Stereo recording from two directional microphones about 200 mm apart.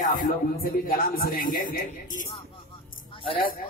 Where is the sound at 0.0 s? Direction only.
45° left (ahead or behind).